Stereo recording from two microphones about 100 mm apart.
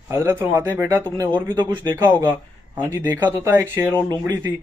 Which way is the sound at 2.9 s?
25° right (ahead or behind).